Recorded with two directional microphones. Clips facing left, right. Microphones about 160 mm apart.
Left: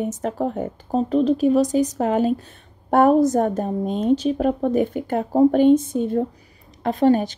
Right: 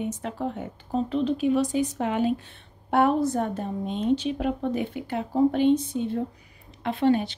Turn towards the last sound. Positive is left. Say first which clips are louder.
# left 5 dB
turn(degrees=40)  # may be behind; listen again after turning